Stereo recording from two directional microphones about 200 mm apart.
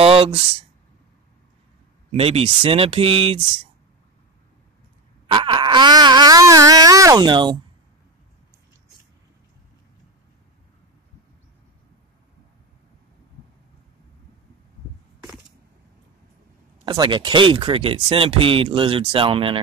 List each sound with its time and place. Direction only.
0.0 s speech: 30° right (ahead or behind)
2.1 s speech: 30° right (ahead or behind)
5.2 s speech: 25° right (ahead or behind)
16.8 s speech: 20° right (ahead or behind)